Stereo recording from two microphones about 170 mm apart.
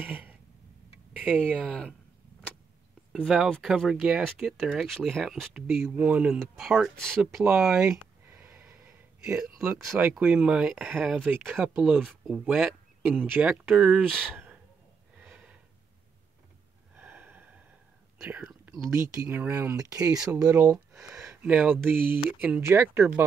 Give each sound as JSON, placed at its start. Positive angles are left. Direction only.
{"t": 0.0, "sound": "a sound", "side_deg": -10}
{"t": 1.2, "sound": "speech", "side_deg": 5}
{"t": 3.1, "sound": "speech", "side_deg": -5}
{"t": 15.1, "sound": "a sound", "side_deg": -5}
{"t": 16.9, "sound": "snort", "side_deg": -10}
{"t": 18.2, "sound": "speech", "side_deg": -15}
{"t": 20.1, "sound": "speech", "side_deg": -5}
{"t": 20.3, "sound": "speech", "side_deg": -20}
{"t": 21.0, "sound": "a sound", "side_deg": -20}
{"t": 21.8, "sound": "speech", "side_deg": -15}